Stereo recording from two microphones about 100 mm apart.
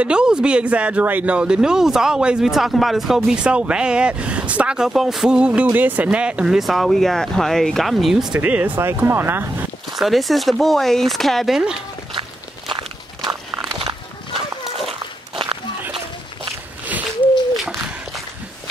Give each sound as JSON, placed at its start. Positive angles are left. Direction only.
{"t": 0.0, "sound": "speech", "side_deg": -10}
{"t": 8.4, "sound": "speech", "side_deg": -15}
{"t": 9.9, "sound": "speech", "side_deg": 0}
{"t": 12.1, "sound": "walk", "side_deg": -60}
{"t": 14.9, "sound": "walk", "side_deg": -55}
{"t": 17.6, "sound": "a sound", "side_deg": 0}